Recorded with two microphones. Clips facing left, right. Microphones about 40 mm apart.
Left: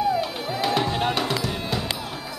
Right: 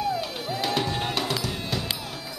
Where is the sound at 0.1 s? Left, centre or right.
Centre.